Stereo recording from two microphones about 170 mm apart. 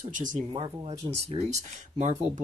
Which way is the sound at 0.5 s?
35° right (ahead or behind).